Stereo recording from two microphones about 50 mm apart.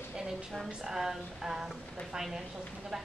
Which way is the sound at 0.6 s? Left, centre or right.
Centre.